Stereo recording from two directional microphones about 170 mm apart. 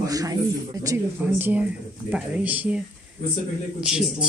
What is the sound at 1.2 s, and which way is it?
Speech, 10° right (ahead or behind).